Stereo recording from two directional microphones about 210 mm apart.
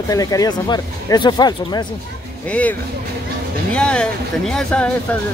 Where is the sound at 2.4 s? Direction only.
5° left (ahead or behind).